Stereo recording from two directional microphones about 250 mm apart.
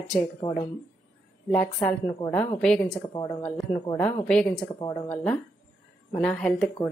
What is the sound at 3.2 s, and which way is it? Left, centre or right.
A woman's voice, centre.